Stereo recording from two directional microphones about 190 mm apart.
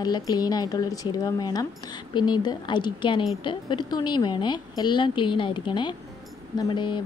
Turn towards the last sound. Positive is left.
turn(degrees=25)  # may be behind; listen again after turning